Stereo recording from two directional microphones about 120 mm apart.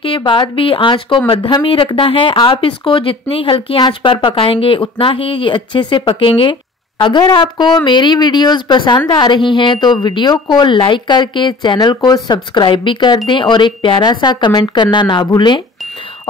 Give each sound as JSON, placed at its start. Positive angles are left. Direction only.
{"t": 0.0, "sound": "speech", "side_deg": 45}